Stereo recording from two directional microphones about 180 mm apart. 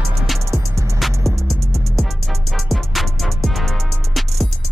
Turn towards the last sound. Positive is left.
turn(degrees=0)  # may be behind; listen again after turning